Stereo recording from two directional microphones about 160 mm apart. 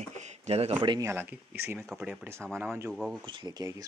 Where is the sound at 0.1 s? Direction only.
45° right (ahead or behind).